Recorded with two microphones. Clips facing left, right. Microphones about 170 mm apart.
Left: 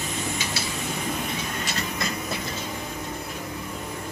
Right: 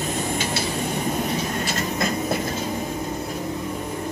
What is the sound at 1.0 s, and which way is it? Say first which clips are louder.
Train: right 5 dB; 40° right (ahead or behind).